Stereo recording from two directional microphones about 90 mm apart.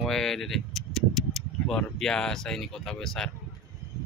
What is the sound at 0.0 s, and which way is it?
Speech, 5° left (ahead or behind).